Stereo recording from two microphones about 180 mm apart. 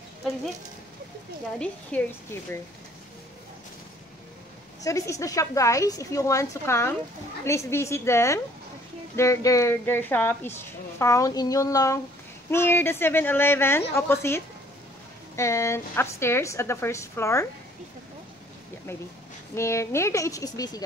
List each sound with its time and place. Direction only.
1.6 s a woman's voice: 10° left (ahead or behind)
4.8 s a woman's voice: 15° left (ahead or behind)
19.5 s a woman's voice: 15° left (ahead or behind)